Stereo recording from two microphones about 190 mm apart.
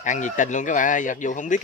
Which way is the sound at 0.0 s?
40° left (ahead or behind).